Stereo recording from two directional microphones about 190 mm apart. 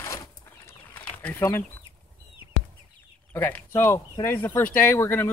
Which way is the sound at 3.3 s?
10° left (ahead or behind).